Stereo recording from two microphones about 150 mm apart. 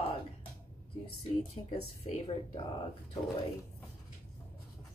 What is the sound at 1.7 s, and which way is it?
Speech, 35° left (ahead or behind).